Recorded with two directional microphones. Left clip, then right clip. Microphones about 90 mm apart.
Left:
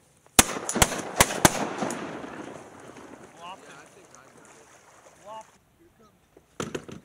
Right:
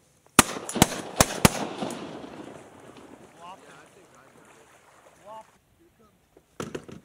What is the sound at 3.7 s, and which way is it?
Boat, 30° left (ahead or behind).